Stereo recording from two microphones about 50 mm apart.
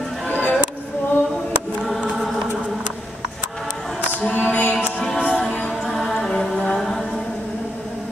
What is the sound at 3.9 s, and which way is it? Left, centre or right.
Music, right.